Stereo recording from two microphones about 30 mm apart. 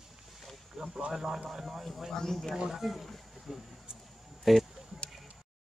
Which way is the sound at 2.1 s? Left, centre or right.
Centre.